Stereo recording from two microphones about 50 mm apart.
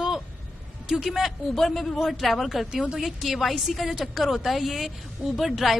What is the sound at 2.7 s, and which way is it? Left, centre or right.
A woman's voice, centre.